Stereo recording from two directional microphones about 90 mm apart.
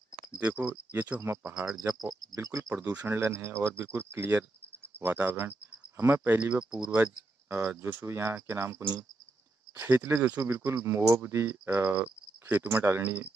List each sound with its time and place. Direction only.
0.3 s speech: 15° right (ahead or behind)
1.2 s speech: 30° right (ahead or behind)
2.7 s speech: 15° right (ahead or behind)
3.2 s speech: 30° right (ahead or behind)
10.7 s speech: 30° right (ahead or behind)